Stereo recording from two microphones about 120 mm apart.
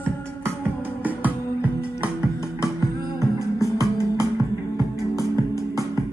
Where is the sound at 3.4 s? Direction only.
25° left (ahead or behind).